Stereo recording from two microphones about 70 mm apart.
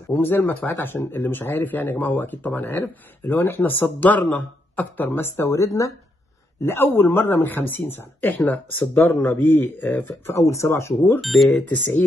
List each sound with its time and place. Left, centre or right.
0.1 s speech: left
5.3 s speech: left
6.6 s speech: left
10.4 s speech: left
11.1 s speech: centre
11.5 s speech: left